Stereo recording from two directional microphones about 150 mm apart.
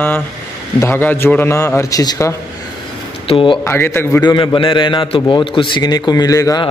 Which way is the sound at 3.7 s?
15° left (ahead or behind).